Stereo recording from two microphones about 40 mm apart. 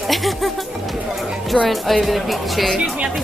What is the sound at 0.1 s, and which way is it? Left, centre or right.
Speech, centre.